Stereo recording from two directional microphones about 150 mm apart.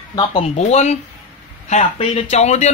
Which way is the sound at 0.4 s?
50° left (ahead or behind).